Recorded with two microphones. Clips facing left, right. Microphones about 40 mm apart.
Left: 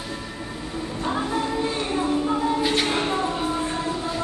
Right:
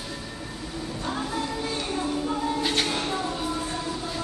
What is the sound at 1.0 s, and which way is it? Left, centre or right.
Music, centre.